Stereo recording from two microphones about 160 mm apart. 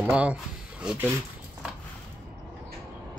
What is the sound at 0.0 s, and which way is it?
Speech, 10° right (ahead or behind).